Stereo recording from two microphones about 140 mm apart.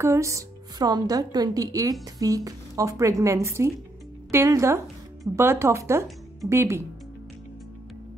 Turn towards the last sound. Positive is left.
turn(degrees=-20)  # may be behind; listen again after turning